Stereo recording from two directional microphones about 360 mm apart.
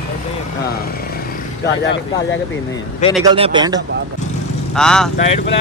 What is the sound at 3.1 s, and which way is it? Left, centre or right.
Speech, centre.